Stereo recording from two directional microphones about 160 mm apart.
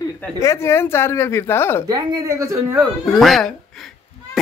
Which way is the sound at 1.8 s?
25° right (ahead or behind).